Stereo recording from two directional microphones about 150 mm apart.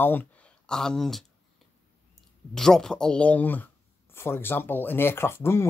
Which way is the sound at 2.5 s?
5° left (ahead or behind).